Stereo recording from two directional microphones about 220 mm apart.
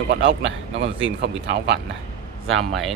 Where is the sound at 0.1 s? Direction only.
55° right (ahead or behind).